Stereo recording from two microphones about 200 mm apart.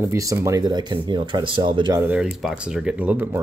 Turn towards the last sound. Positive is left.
turn(degrees=-5)  # may be behind; listen again after turning